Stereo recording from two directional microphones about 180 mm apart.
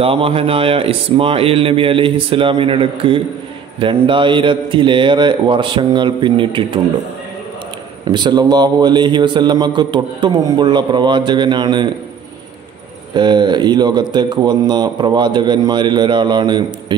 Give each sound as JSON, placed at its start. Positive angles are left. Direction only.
{"t": 0.0, "sound": "a man's voice", "side_deg": -30}
{"t": 8.1, "sound": "a man's voice", "side_deg": -25}
{"t": 13.1, "sound": "a man's voice", "side_deg": -25}